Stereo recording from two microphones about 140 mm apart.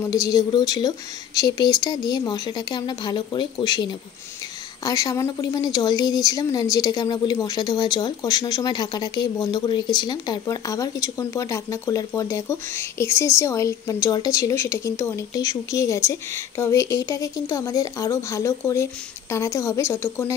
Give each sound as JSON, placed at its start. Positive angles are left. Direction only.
{"t": 0.1, "sound": "a woman's voice", "side_deg": 25}